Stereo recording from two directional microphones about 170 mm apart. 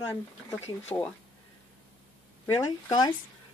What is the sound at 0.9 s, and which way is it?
Speech, 10° left (ahead or behind).